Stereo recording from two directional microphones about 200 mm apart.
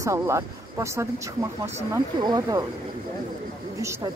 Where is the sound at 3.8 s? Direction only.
15° right (ahead or behind).